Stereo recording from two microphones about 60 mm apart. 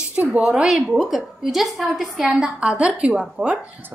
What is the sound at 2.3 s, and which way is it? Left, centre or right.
A woman's voice, centre.